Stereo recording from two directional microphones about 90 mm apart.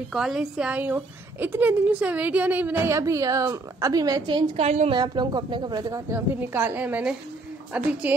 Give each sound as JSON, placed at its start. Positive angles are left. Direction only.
{"t": 0.1, "sound": "a woman's voice", "side_deg": -5}
{"t": 0.7, "sound": "a woman's voice", "side_deg": -20}
{"t": 2.8, "sound": "a woman's voice", "side_deg": -35}
{"t": 4.6, "sound": "a woman's voice", "side_deg": -90}
{"t": 5.0, "sound": "speech", "side_deg": -55}
{"t": 6.1, "sound": "a woman's voice", "side_deg": -25}